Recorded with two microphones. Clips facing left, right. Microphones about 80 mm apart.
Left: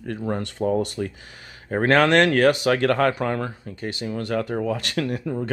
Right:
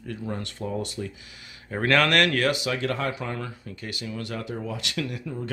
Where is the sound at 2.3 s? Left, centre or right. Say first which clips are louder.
Left 7 dB; left.